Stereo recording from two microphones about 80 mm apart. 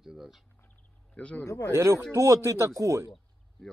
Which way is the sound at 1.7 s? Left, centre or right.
Right.